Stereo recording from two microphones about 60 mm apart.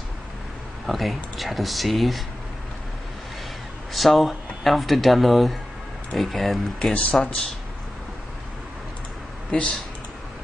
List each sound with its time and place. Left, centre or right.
0.8 s speech: centre
3.9 s speech: centre
6.9 s speech: left
9.5 s speech: centre